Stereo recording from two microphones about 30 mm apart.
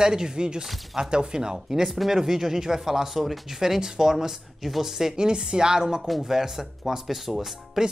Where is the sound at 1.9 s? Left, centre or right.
Centre.